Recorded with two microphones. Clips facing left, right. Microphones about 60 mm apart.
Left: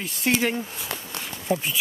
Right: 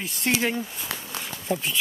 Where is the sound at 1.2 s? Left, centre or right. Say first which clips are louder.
Left 2 dB; centre.